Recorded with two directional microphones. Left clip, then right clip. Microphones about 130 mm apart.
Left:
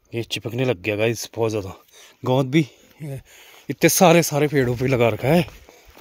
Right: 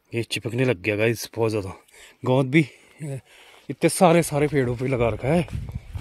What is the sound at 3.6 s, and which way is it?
Speech, 40° left (ahead or behind).